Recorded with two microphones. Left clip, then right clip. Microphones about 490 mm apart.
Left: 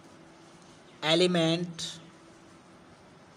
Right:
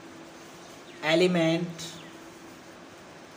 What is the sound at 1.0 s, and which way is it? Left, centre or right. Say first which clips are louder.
Speech: right 2 dB; left.